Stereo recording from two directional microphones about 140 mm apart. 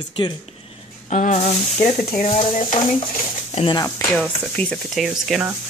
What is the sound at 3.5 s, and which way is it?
Speech, 40° left (ahead or behind).